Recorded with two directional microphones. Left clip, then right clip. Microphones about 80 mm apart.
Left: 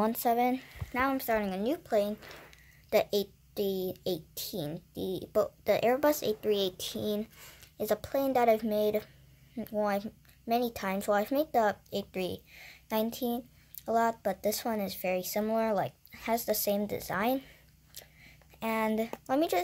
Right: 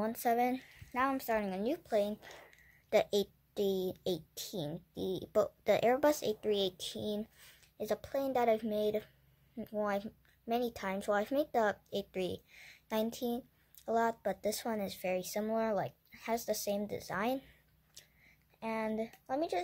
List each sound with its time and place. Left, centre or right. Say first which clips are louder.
0.3 s a woman's voice: left 1 dB; centre
5.3 s a woman's voice: left 2 dB; right; by 9.1 s centre
9.6 s speech: left 5 dB; centre
11.1 s speech: left 4 dB; centre
18.6 s speech: left 6 dB; centre